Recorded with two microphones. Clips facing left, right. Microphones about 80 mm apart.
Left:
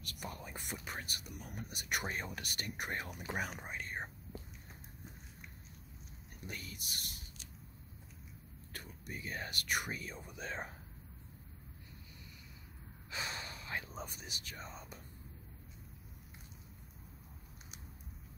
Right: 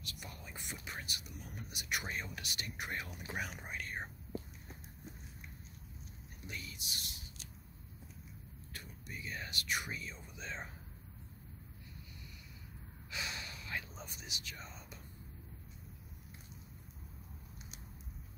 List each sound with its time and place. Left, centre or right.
0.0 s speech: left
6.4 s speech: left
8.7 s speech: left
13.1 s a sound: left
14.0 s speech: left